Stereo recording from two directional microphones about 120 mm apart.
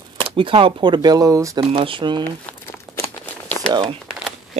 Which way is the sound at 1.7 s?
45° right (ahead or behind).